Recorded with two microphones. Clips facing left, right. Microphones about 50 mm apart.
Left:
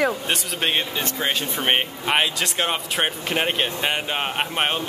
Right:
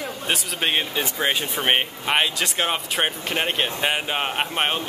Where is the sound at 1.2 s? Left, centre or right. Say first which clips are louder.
Right 1 dB; centre.